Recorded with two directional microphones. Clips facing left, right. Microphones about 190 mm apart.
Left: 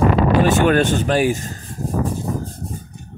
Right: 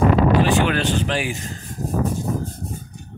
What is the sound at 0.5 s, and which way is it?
Speech, 45° left (ahead or behind).